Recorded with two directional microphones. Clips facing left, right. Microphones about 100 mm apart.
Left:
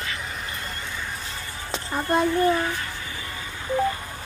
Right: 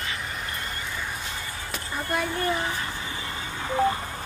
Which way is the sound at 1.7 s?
25° left (ahead or behind).